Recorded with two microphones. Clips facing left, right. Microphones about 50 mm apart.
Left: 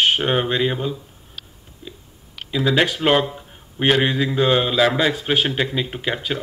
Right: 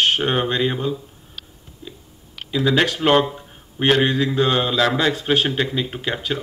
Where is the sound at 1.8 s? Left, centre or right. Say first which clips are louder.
Even; centre.